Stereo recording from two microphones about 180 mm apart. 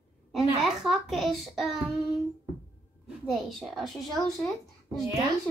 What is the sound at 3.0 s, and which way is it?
A child's voice, centre (ahead or behind).